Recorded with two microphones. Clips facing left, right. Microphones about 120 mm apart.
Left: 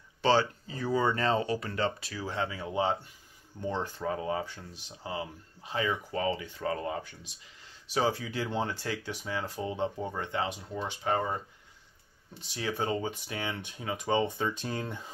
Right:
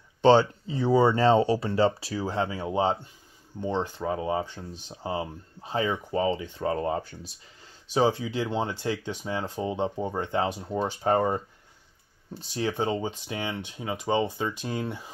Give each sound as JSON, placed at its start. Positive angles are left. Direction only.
{"t": 0.2, "sound": "speech", "side_deg": -25}
{"t": 3.6, "sound": "speech", "side_deg": -20}
{"t": 12.4, "sound": "speech", "side_deg": -30}